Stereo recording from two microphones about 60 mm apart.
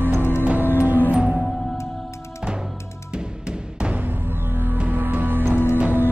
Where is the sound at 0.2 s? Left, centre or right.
Left.